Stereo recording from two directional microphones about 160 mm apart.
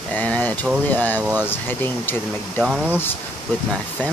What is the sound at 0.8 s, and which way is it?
Speech, 10° left (ahead or behind).